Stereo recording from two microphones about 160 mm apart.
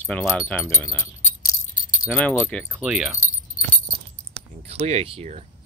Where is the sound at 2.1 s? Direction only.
5° left (ahead or behind).